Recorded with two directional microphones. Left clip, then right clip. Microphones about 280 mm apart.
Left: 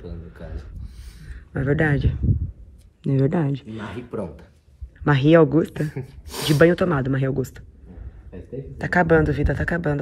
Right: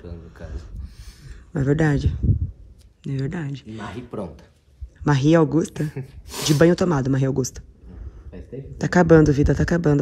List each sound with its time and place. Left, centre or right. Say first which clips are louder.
0.8 s a sound: right 1 dB; centre
1.5 s speech: even; centre
3.0 s speech: left 8 dB; centre
5.0 s speech: left 2 dB; centre
5.9 s speech: left 1 dB; centre
6.6 s speech: left 1 dB; centre
8.3 s speech: left 1 dB; centre
8.7 s speech: right 3 dB; right